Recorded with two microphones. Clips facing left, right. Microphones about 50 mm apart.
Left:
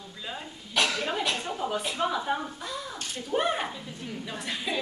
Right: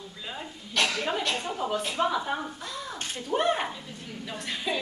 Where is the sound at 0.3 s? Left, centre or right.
Centre.